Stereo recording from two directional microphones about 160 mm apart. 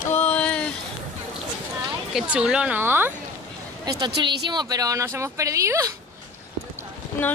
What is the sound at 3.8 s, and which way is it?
A woman's voice, 25° right (ahead or behind).